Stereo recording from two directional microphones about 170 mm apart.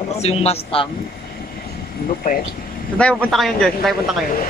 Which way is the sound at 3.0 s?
5° left (ahead or behind).